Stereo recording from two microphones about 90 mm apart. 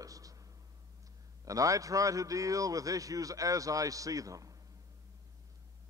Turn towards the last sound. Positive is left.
turn(degrees=-40)  # may be behind; listen again after turning